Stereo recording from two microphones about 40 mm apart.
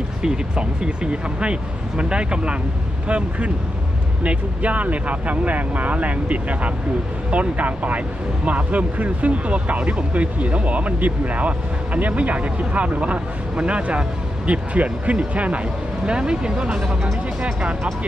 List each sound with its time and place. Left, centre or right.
0.2 s speech: right
16.1 s speech: right